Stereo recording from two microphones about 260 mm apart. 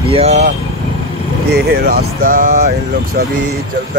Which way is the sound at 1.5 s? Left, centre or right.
Right.